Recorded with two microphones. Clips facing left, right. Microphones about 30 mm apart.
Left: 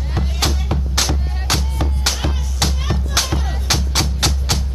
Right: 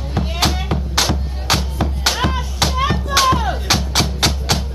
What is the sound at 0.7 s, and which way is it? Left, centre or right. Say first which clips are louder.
Music: right 2 dB; centre.